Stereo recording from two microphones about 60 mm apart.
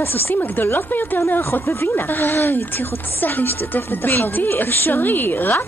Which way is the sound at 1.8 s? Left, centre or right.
Left.